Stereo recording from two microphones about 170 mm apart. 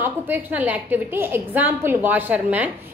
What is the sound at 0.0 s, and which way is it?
A woman's voice, 10° right (ahead or behind).